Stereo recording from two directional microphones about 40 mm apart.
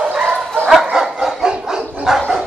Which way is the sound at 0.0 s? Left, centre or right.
Right.